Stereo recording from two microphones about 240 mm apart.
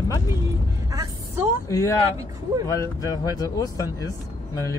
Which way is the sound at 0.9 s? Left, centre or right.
Centre.